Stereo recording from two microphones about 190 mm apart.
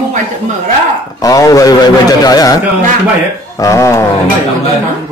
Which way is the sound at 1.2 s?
20° left (ahead or behind).